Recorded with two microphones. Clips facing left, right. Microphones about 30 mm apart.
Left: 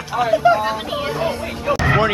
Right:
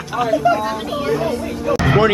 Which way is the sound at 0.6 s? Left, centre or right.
Centre.